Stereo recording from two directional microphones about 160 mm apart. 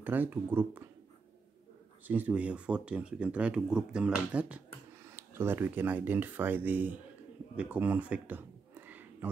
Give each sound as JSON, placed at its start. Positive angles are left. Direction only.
{"t": 0.0, "sound": "speech", "side_deg": -10}
{"t": 2.0, "sound": "speech", "side_deg": -10}
{"t": 7.5, "sound": "a sound", "side_deg": -10}